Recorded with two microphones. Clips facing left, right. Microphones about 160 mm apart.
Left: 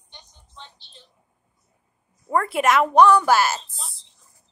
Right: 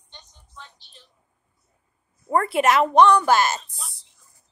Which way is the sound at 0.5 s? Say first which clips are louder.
Even; 25° left (ahead or behind).